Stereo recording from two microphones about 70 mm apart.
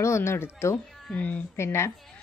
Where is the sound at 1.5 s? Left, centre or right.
Left.